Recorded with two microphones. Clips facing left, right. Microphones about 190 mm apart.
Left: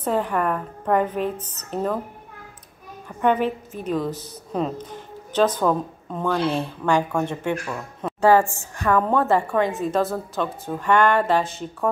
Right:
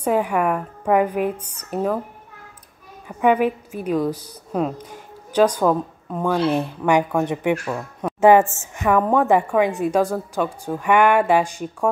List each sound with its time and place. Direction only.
0.0 s speech: 10° right (ahead or behind)
3.1 s a woman's voice: 10° right (ahead or behind)